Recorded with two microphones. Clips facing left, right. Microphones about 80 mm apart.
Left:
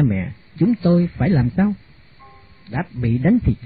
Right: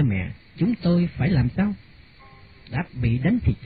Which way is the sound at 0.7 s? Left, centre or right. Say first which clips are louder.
Left 5 dB; left.